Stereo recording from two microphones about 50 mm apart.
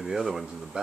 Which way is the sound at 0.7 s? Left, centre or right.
Right.